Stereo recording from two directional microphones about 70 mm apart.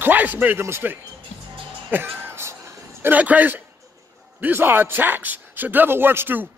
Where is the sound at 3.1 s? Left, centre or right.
Right.